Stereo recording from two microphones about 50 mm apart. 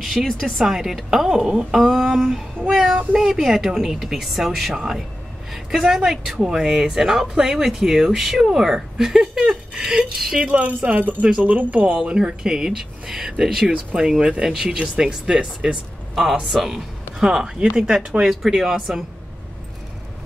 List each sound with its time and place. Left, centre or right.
0.0 s a woman's voice: centre
0.3 s a sound: centre
0.7 s a woman's voice: centre
1.8 s a sound: centre
2.7 s a woman's voice: centre
10.5 s speech: right
12.0 s a woman's voice: centre